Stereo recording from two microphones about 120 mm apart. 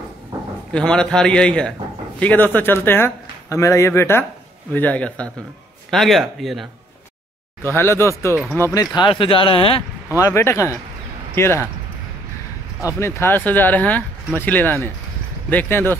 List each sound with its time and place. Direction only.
0.7 s speech: 5° left (ahead or behind)
7.6 s speech: 20° left (ahead or behind)
8.7 s speech: 40° left (ahead or behind)
10.1 s speech: 25° left (ahead or behind)
12.8 s speech: 20° left (ahead or behind)